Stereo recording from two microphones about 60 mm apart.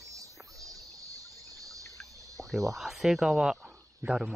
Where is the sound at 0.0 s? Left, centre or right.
Right.